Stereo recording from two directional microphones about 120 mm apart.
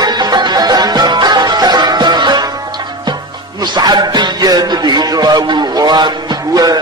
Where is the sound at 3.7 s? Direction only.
35° right (ahead or behind).